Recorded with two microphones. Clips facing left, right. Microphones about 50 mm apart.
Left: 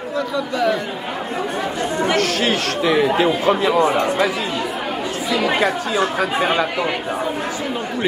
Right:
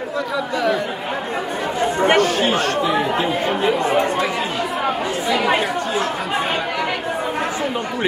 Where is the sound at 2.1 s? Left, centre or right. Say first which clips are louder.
Right 2 dB; left.